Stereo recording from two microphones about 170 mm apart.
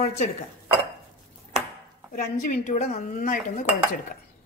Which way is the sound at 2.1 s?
55° left (ahead or behind).